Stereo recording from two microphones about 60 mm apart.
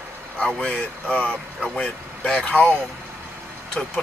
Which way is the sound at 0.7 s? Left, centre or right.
Left.